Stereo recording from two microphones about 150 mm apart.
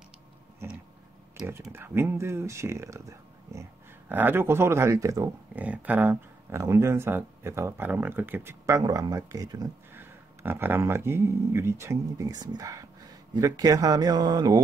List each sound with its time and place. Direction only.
0.6 s a sound: 15° right (ahead or behind)
1.7 s speech: 15° right (ahead or behind)
5.6 s speech: 10° right (ahead or behind); by 14.6 s 25° right (ahead or behind)